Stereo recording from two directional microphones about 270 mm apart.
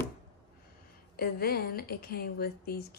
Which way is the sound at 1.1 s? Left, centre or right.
Left.